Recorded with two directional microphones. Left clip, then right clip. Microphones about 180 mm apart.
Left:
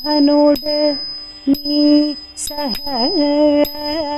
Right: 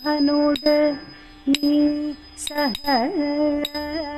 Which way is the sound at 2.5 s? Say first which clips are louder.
Even; 40° left (ahead or behind).